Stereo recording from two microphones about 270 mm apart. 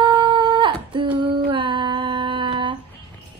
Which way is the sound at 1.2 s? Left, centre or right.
Centre.